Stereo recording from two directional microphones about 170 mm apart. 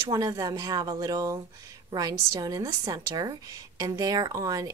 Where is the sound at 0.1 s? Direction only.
20° right (ahead or behind).